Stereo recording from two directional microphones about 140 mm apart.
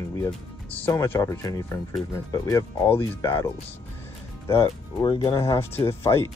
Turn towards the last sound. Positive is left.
turn(degrees=20)  # may be behind; listen again after turning